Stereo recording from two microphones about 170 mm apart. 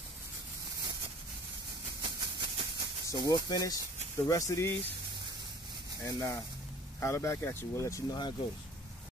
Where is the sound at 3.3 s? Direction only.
20° left (ahead or behind).